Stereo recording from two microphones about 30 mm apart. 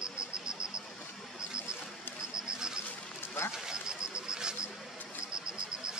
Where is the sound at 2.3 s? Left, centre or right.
Right.